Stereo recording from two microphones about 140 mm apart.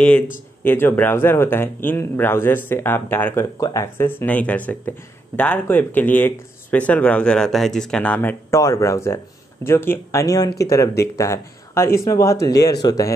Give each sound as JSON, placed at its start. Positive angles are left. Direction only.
{"t": 0.7, "sound": "speech", "side_deg": 15}